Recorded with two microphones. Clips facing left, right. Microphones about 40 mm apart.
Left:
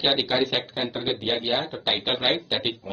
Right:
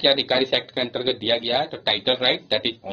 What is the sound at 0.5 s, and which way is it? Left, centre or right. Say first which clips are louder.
Speech: right 4 dB; right.